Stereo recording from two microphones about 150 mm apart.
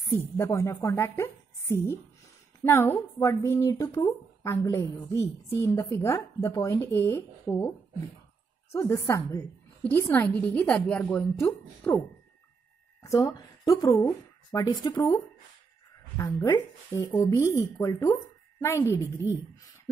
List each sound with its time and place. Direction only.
0.1 s speech: 15° left (ahead or behind)
8.7 s speech: 20° left (ahead or behind)
13.0 s speech: 20° left (ahead or behind)
16.4 s speech: 25° left (ahead or behind)